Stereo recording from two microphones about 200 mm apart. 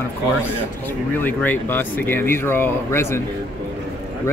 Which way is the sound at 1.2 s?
10° left (ahead or behind).